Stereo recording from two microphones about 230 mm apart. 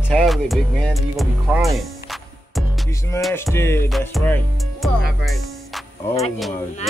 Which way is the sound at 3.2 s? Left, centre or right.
Centre.